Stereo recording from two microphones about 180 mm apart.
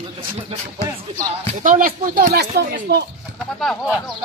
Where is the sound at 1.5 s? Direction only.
45° right (ahead or behind); by 3.0 s 60° right (ahead or behind).